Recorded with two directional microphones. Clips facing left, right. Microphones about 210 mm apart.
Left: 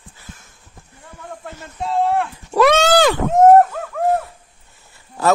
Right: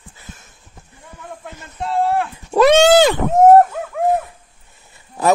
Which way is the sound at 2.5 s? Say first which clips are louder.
Right 4 dB; 25° right (ahead or behind).